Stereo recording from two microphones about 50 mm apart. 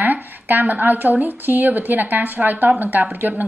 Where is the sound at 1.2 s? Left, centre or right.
Right.